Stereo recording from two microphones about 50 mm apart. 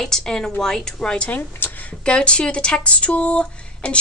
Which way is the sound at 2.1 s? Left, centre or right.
Left.